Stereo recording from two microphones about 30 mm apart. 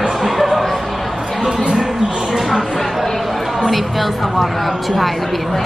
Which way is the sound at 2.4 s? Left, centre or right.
Centre.